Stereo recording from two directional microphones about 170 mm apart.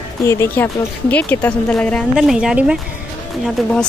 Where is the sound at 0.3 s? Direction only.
15° left (ahead or behind).